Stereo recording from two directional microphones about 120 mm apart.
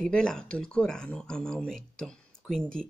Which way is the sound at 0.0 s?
5° left (ahead or behind).